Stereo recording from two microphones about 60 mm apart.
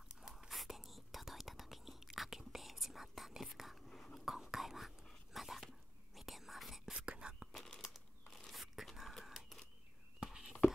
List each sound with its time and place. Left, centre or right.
0.5 s whispering: centre
5.3 s dog: centre
6.1 s whispering: centre
7.1 s whispering: centre
7.5 s a sound: centre
8.5 s whispering: centre
10.2 s a sound: centre